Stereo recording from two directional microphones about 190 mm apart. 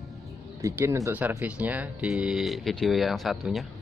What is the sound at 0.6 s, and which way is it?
Speech, 15° right (ahead or behind).